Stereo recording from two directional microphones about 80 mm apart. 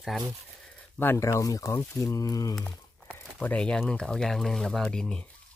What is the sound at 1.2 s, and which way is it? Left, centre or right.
Speech, left.